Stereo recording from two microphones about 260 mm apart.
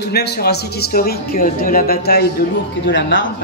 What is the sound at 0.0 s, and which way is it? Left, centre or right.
A woman's voice, left.